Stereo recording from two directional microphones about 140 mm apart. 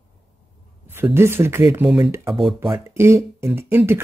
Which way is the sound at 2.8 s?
20° right (ahead or behind).